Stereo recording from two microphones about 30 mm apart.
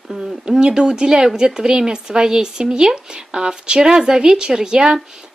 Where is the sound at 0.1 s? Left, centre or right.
Right.